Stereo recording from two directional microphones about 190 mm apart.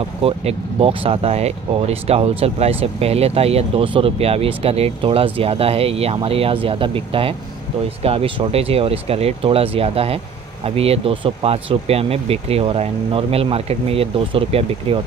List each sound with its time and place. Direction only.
0.2 s speech: 30° right (ahead or behind)